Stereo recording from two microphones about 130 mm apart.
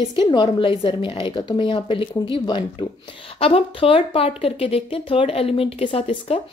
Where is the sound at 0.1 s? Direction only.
35° left (ahead or behind).